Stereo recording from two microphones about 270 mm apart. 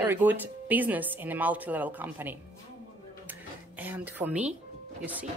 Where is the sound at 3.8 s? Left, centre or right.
Centre.